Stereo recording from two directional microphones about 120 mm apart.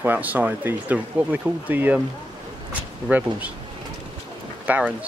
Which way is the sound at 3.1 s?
10° right (ahead or behind).